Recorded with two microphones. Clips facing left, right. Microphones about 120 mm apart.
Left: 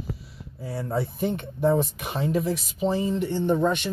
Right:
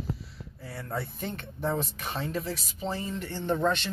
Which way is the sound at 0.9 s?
15° left (ahead or behind).